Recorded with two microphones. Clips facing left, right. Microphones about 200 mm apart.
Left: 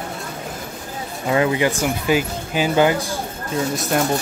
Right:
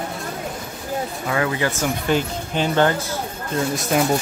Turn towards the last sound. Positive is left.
turn(degrees=0)  # may be behind; listen again after turning